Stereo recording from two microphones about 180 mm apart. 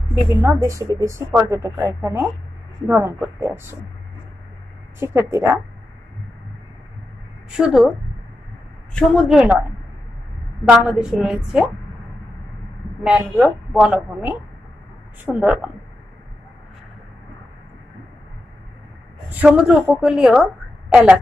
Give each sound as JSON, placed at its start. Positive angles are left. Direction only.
{"t": 0.1, "sound": "a woman's voice", "side_deg": -15}
{"t": 4.9, "sound": "a woman's voice", "side_deg": -15}
{"t": 7.5, "sound": "a woman's voice", "side_deg": -5}
{"t": 8.9, "sound": "a woman's voice", "side_deg": 0}
{"t": 10.6, "sound": "a woman's voice", "side_deg": -5}
{"t": 13.0, "sound": "a woman's voice", "side_deg": -5}
{"t": 19.3, "sound": "a woman's voice", "side_deg": -5}